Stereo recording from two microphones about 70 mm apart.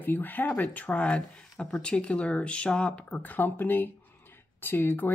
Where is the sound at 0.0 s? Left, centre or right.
Left.